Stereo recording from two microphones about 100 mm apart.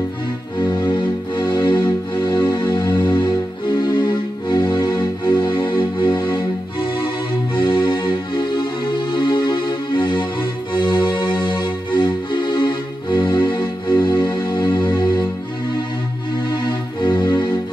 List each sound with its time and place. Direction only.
0.6 s music: 50° left (ahead or behind)
16.5 s music: 45° left (ahead or behind)